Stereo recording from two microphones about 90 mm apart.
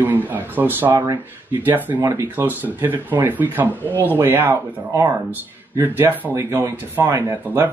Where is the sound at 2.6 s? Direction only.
20° right (ahead or behind).